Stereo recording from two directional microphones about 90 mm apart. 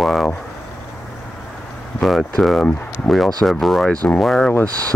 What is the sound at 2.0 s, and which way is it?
Speech, centre (ahead or behind).